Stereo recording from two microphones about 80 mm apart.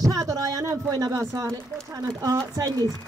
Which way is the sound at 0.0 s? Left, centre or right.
Right.